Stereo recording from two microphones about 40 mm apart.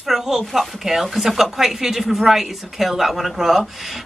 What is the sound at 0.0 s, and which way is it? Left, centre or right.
Speech, centre.